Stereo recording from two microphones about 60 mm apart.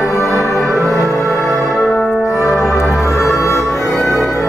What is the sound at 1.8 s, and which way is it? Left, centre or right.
Brass instrument, centre.